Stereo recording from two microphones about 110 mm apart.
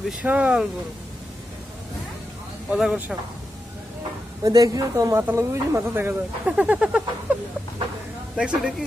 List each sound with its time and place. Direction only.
0.2 s speech: 10° right (ahead or behind)
2.7 s speech: 5° right (ahead or behind)
4.4 s a woman's voice: 35° right (ahead or behind); by 7.3 s 10° right (ahead or behind)
8.4 s speech: 5° right (ahead or behind)